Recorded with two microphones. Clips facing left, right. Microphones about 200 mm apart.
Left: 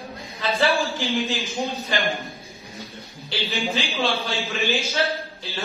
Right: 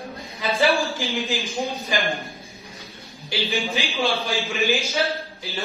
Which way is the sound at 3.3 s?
15° right (ahead or behind).